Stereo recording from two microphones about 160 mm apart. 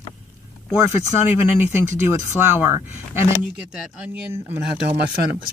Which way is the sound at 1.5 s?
15° right (ahead or behind).